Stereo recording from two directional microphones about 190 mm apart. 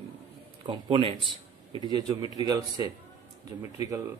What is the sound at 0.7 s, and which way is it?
A man's voice, 25° right (ahead or behind).